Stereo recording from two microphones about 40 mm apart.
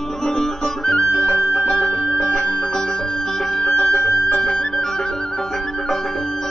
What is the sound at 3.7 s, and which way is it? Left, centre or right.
Flute, left.